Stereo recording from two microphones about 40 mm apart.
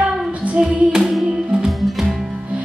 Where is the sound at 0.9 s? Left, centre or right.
Centre.